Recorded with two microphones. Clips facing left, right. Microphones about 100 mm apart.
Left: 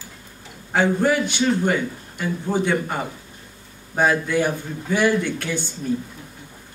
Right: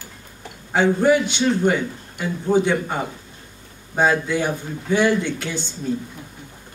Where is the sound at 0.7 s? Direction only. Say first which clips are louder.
Right 2 dB; 15° right (ahead or behind).